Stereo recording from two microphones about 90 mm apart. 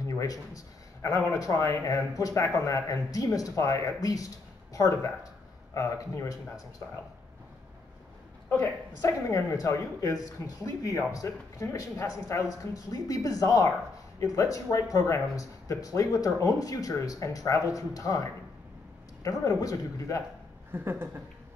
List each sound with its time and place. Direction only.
0.0 s a sound: 40° left (ahead or behind)
1.3 s speech: 40° left (ahead or behind)
9.0 s speech: 40° left (ahead or behind)
19.4 s speech: 40° left (ahead or behind)
20.7 s speech: 25° right (ahead or behind)